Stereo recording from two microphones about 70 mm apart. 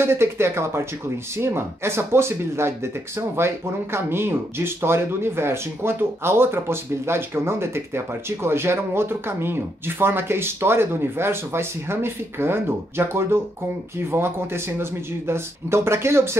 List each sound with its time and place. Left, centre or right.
0.0 s speech: right